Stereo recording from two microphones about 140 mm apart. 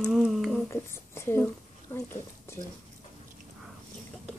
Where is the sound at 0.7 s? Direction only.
15° left (ahead or behind).